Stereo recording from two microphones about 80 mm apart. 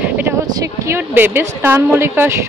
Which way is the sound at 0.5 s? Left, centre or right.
Right.